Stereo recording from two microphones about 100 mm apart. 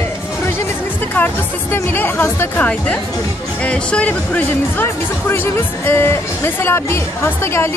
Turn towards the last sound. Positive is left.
turn(degrees=25)  # may be behind; listen again after turning